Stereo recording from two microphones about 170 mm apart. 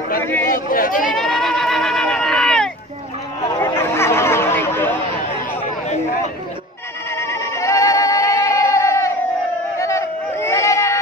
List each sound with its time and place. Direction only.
0.2 s chatter: 15° left (ahead or behind)
0.5 s speech: 55° left (ahead or behind)
1.1 s goat: 5° left (ahead or behind)
3.5 s chatter: 15° left (ahead or behind)
5.6 s a sound: 40° left (ahead or behind)
7.2 s music: 15° left (ahead or behind)
9.8 s a sound: 15° left (ahead or behind)